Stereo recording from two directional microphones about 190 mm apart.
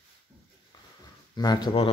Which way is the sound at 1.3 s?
20° left (ahead or behind).